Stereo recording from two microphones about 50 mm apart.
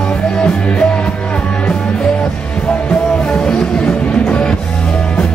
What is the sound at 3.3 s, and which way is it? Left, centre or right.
Music, centre.